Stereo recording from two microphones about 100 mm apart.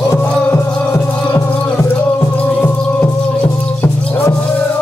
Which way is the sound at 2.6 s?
20° left (ahead or behind).